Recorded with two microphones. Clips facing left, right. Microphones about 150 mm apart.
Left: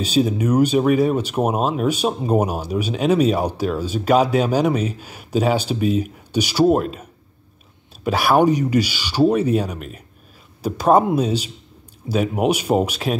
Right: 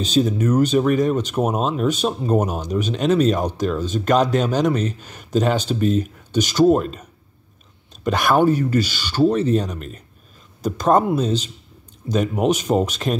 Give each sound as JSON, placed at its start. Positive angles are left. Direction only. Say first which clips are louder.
{"t": 0.0, "sound": "speech", "louder": "even", "side_deg": 10}